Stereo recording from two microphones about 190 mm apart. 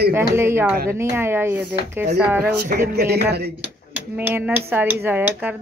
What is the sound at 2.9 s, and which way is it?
Speech, 55° right (ahead or behind).